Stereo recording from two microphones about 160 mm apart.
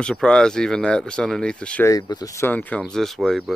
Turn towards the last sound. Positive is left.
turn(degrees=0)  # may be behind; listen again after turning